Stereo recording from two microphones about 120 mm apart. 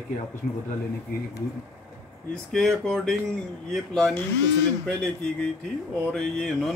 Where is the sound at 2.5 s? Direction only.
5° left (ahead or behind).